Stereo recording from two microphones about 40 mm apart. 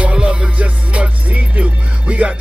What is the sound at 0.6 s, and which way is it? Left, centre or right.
Music, right.